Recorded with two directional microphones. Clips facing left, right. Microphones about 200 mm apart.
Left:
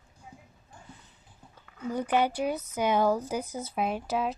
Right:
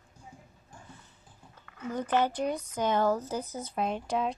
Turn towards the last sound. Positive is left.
turn(degrees=5)  # may be behind; listen again after turning